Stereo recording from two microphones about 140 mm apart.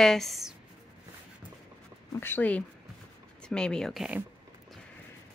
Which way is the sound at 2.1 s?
15° left (ahead or behind).